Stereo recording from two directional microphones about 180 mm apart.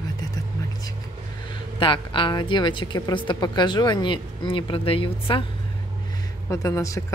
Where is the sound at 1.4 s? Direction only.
30° left (ahead or behind).